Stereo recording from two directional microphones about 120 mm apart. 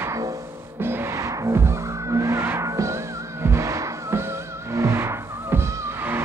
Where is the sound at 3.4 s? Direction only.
25° right (ahead or behind).